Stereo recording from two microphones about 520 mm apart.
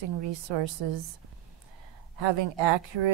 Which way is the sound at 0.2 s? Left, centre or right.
Right.